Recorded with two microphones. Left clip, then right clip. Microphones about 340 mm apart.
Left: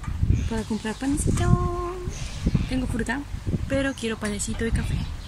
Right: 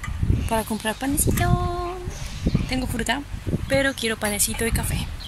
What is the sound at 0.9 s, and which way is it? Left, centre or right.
Speech, centre.